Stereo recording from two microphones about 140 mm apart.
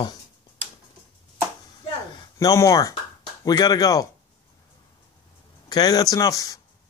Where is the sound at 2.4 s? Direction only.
25° left (ahead or behind).